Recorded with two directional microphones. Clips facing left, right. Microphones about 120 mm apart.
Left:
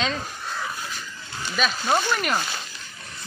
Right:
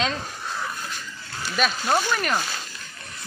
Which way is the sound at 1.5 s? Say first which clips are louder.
Even; centre (ahead or behind).